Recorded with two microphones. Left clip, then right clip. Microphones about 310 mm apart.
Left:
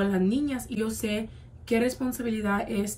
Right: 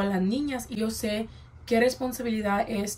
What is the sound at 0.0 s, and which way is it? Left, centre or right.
A woman's voice, left.